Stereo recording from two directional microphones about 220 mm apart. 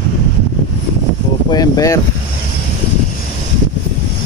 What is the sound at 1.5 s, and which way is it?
Speech, 15° left (ahead or behind).